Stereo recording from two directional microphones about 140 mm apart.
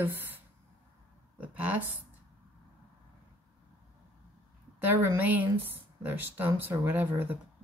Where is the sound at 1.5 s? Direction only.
10° right (ahead or behind).